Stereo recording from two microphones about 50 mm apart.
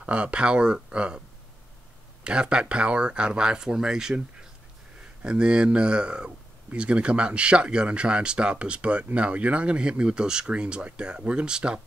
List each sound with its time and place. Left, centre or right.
0.0 s speech: right
2.2 s speech: centre